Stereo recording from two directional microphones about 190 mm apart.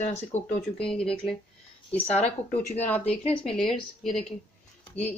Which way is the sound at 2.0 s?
35° left (ahead or behind).